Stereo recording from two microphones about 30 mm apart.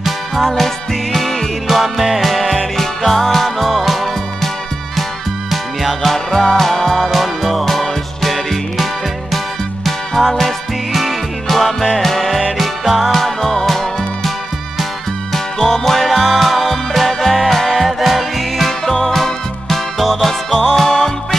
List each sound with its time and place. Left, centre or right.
0.0 s music: centre
5.5 s music: centre
6.1 s music: centre
9.8 s music: centre
10.9 s music: centre
13.1 s music: centre
15.3 s music: centre
16.0 s music: centre
18.7 s music: centre